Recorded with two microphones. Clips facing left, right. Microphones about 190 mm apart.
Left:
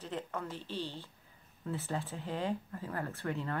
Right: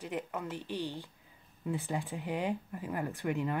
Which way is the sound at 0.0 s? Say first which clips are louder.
Right 2 dB; 15° right (ahead or behind).